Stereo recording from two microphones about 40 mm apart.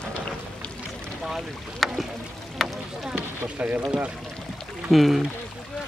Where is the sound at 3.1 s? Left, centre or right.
Right.